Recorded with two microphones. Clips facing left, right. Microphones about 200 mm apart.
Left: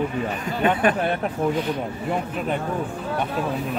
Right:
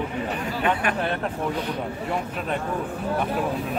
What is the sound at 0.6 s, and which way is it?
Speech, 30° left (ahead or behind).